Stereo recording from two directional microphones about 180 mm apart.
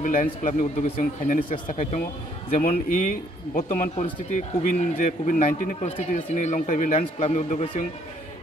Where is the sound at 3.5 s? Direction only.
45° left (ahead or behind).